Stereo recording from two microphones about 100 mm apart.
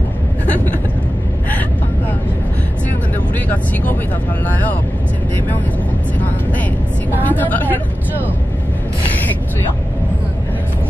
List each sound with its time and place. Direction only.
4.5 s speech: 15° left (ahead or behind)
7.2 s speech: 20° left (ahead or behind)